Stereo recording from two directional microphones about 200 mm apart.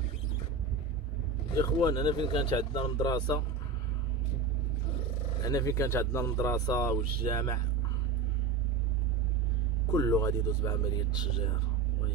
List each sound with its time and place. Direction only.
1.6 s speech: 25° left (ahead or behind)
5.4 s speech: 15° left (ahead or behind)
9.9 s speech: 15° left (ahead or behind)